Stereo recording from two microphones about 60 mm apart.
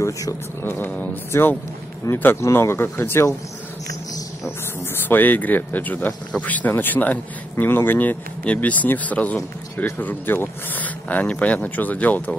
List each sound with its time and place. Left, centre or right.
0.0 s speech: left
0.7 s speech: left
1.3 s speech: left
5.0 s speech: left